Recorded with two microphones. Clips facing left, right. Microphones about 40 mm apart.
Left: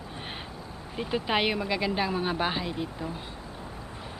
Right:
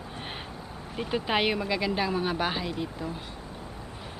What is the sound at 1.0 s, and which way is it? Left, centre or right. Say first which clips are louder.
Speech: even; centre.